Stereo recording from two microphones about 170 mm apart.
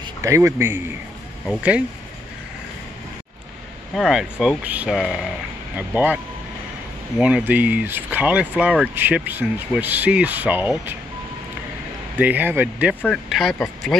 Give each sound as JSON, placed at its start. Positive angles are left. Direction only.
{"t": 0.0, "sound": "a man's voice", "side_deg": -20}
{"t": 3.9, "sound": "speech", "side_deg": 0}
{"t": 12.2, "sound": "speech", "side_deg": -10}
{"t": 13.0, "sound": "speech", "side_deg": 0}